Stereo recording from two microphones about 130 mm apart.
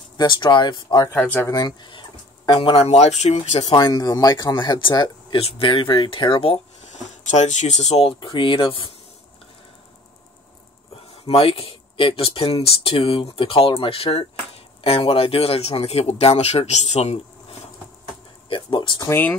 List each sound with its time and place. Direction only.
0.2 s speech: 35° left (ahead or behind)
1.1 s speech: 10° left (ahead or behind)
1.5 s speech: 35° left (ahead or behind); by 3.3 s 55° left (ahead or behind)
3.6 s speech: 30° left (ahead or behind)
5.4 s speech: 45° left (ahead or behind)
8.2 s speech: 40° left (ahead or behind)
11.2 s speech: 50° left (ahead or behind)
18.5 s speech: 40° left (ahead or behind)
19.0 s speech: 15° left (ahead or behind)